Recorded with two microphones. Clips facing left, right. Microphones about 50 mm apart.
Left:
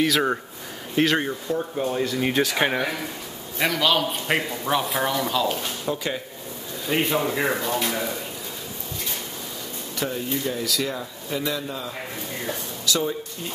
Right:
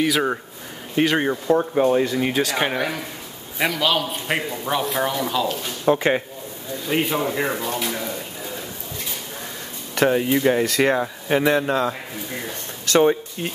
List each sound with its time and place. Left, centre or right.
0.0 s a man's voice: centre
1.5 s speech: right
2.2 s a man's voice: centre
5.9 s speech: right
6.9 s a man's voice: centre
9.9 s speech: right
12.8 s speech: right